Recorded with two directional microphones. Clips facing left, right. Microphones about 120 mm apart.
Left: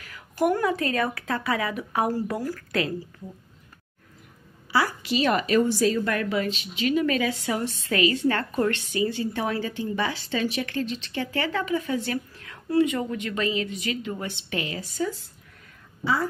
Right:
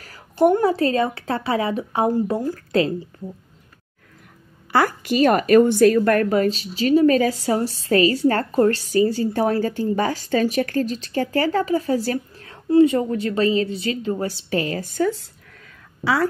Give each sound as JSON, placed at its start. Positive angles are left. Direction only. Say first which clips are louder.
{"t": 0.4, "sound": "speech", "louder": "right 7 dB", "side_deg": -30}
{"t": 4.6, "sound": "a woman's voice", "louder": "right 5 dB", "side_deg": -55}
{"t": 16.0, "sound": "speech", "louder": "right 5 dB", "side_deg": -90}